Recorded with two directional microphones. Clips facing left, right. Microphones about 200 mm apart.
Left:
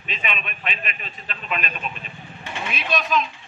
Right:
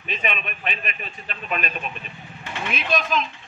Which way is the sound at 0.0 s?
45° right (ahead or behind).